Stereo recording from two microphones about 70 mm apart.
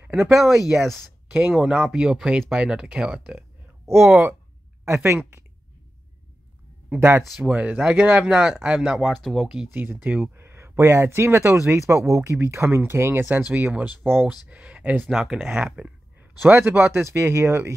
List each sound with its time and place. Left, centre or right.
0.2 s speech: centre
1.5 s speech: centre
4.1 s speech: centre
4.8 s speech: right
7.0 s speech: right
7.4 s speech: right
9.0 s speech: centre
9.8 s speech: right
15.0 s speech: centre
16.2 s speech: right